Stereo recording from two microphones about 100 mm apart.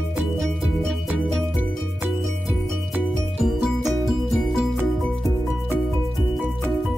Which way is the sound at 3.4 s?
Centre (ahead or behind).